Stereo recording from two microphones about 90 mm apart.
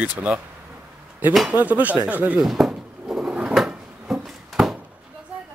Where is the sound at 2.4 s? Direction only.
5° right (ahead or behind).